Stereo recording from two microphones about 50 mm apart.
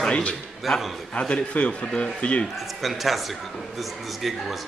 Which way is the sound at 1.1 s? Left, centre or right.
Left.